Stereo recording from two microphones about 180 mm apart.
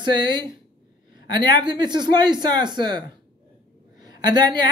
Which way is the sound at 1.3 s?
25° right (ahead or behind).